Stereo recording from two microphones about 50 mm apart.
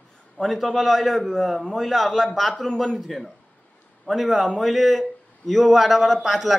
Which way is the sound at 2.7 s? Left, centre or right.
Centre.